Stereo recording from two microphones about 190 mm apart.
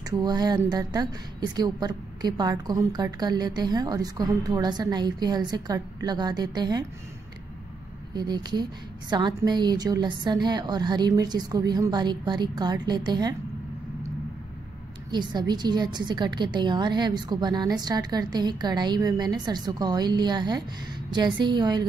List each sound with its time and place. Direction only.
0.2 s a woman's voice: 20° right (ahead or behind)
8.1 s a woman's voice: 20° right (ahead or behind)
15.0 s a woman's voice: 20° right (ahead or behind)